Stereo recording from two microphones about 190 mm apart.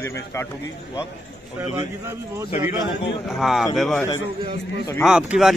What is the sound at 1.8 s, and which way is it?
Speech, 15° right (ahead or behind).